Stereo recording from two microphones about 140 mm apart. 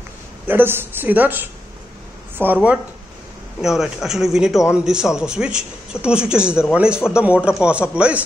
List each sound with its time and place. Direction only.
0.5 s a man's voice: 15° right (ahead or behind)